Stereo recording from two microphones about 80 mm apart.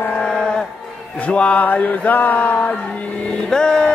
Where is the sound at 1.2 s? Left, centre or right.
Centre.